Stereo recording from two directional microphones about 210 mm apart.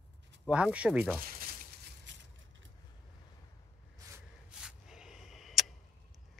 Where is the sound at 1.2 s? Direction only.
45° right (ahead or behind).